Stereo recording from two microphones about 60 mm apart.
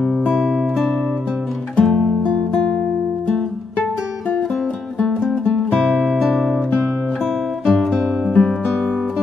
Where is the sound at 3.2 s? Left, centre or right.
Centre.